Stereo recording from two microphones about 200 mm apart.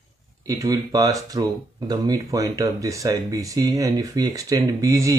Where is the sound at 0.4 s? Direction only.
15° right (ahead or behind).